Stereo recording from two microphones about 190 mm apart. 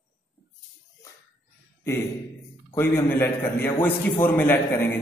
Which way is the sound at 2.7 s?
10° left (ahead or behind).